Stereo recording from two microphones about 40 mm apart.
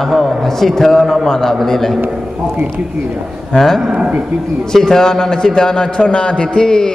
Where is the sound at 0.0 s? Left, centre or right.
Centre.